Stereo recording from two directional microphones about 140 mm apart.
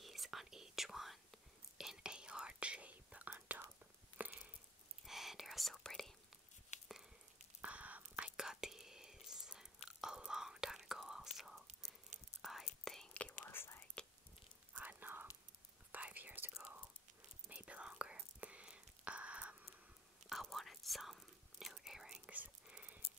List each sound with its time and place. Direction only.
0.0 s whispering: centre (ahead or behind)
4.2 s a sound: 10° right (ahead or behind)
5.0 s whispering: centre (ahead or behind)
6.7 s a sound: 55° left (ahead or behind)
7.6 s whispering: 10° right (ahead or behind)
9.8 s chewing: 5° right (ahead or behind)
11.3 s whispering: centre (ahead or behind); by 13.8 s 15° left (ahead or behind)
14.7 s whispering: 10° right (ahead or behind)